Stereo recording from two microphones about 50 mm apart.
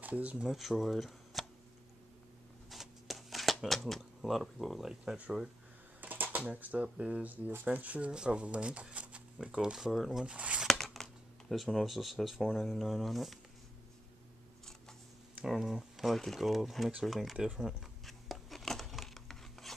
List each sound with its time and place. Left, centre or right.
0.0 s speech: right
0.5 s speech: centre
2.7 s a sound: centre
5.1 s speech: centre
5.9 s speech: right; by 9.9 s centre
9.9 s speech: centre
10.2 s speech: right
10.7 s a sound: centre
12.4 s speech: centre
15.4 s speech: centre
17.6 s speech: centre
18.0 s rub: centre